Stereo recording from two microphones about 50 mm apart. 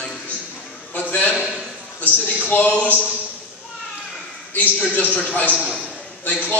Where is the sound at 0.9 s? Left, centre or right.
Left.